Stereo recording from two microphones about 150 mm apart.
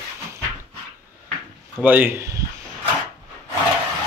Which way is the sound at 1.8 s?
10° right (ahead or behind).